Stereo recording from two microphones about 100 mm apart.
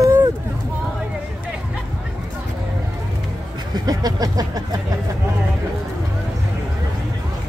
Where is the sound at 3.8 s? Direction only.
35° right (ahead or behind).